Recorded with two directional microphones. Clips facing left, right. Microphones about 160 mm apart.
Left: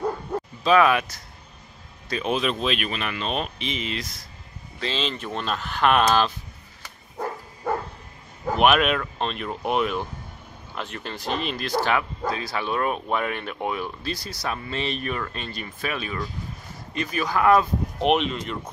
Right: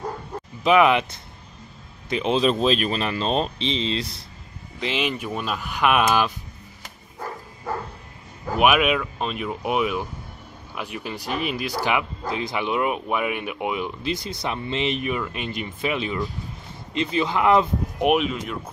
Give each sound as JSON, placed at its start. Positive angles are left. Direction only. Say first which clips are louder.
{"t": 0.7, "sound": "speech", "louder": "right 2 dB", "side_deg": -20}
{"t": 2.0, "sound": "speech", "louder": "right 3 dB", "side_deg": -20}
{"t": 2.4, "sound": "speech", "louder": "right 5 dB", "side_deg": -35}
{"t": 4.7, "sound": "speech", "louder": "right 2 dB", "side_deg": -15}
{"t": 8.5, "sound": "speech", "louder": "right 1 dB", "side_deg": -10}
{"t": 18.1, "sound": "speech", "louder": "right 1 dB", "side_deg": -5}